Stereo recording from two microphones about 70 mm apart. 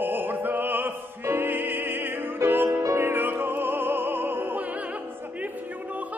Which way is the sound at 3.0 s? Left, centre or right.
Right.